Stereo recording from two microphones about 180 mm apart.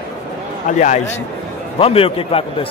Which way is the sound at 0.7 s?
45° left (ahead or behind).